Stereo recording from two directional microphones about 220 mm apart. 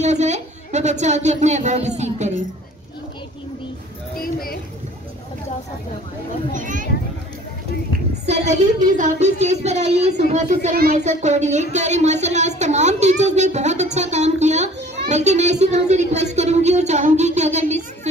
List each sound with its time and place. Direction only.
0.0 s speech: 30° right (ahead or behind)
4.2 s a sound: 40° left (ahead or behind)
6.5 s children playing: 35° right (ahead or behind)
8.3 s speech: 35° right (ahead or behind)